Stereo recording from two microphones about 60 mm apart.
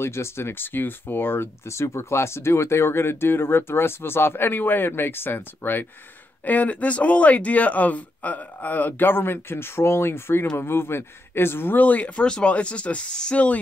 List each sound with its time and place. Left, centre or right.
0.0 s speech: left
1.7 s speech: left
12.2 s speech: centre